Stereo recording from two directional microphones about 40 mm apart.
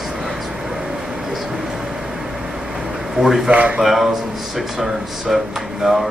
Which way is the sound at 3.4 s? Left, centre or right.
Right.